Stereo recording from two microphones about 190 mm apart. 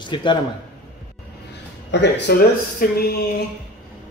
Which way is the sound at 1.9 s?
60° left (ahead or behind).